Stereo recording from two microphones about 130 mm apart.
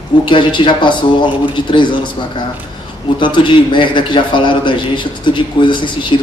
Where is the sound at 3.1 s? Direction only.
40° left (ahead or behind).